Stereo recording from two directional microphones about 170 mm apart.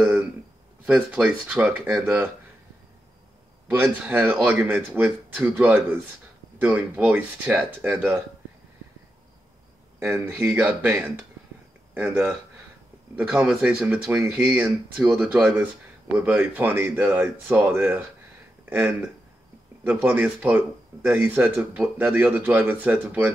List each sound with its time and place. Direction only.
0.8 s speech: 5° right (ahead or behind)
3.6 s speech: 10° right (ahead or behind)
9.9 s speech: 15° right (ahead or behind)
13.3 s speech: 5° right (ahead or behind)